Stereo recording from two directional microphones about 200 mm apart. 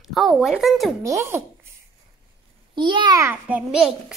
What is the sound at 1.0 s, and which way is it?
Speech, 15° right (ahead or behind).